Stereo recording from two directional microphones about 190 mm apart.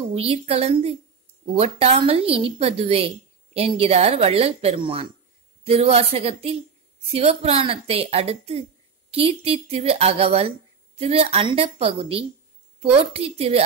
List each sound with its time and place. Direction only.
0.1 s a woman's voice: 30° right (ahead or behind)